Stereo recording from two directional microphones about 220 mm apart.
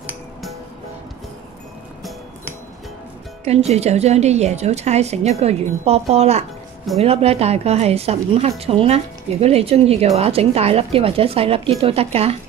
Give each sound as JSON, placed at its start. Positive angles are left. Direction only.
{"t": 0.0, "sound": "music", "side_deg": 0}
{"t": 3.4, "sound": "a woman's voice", "side_deg": -30}